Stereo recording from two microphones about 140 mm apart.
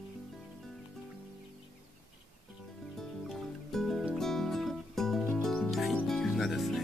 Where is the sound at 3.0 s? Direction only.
Centre (ahead or behind).